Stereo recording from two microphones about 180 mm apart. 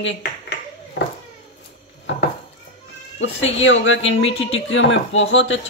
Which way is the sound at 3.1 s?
90° left.